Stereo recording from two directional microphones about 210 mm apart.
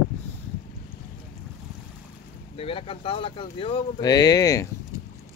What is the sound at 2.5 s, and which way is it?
Speech, 25° left (ahead or behind).